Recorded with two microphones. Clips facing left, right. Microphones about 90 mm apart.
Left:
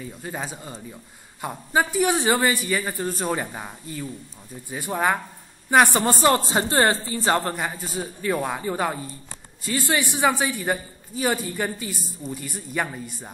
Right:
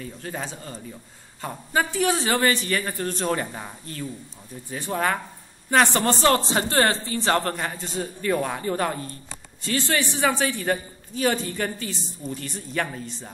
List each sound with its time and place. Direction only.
0.0 s a man's voice: 10° left (ahead or behind)
6.7 s a woman's voice: 25° left (ahead or behind)
7.0 s a man's voice: 5° left (ahead or behind)